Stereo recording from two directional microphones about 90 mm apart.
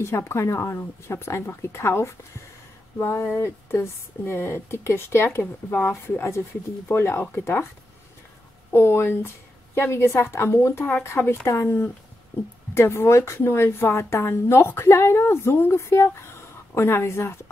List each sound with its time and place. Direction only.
0.0 s a woman's voice: 30° left (ahead or behind)
8.7 s a woman's voice: 25° left (ahead or behind)